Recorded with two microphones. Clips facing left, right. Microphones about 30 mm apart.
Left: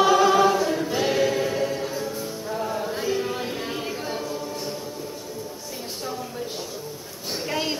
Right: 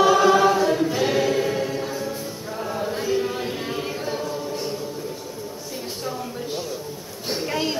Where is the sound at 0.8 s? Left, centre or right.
Centre.